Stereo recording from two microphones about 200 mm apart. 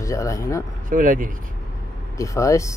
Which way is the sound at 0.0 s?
15° left (ahead or behind).